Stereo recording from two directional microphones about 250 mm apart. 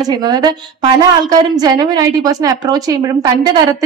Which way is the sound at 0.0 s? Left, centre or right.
Centre.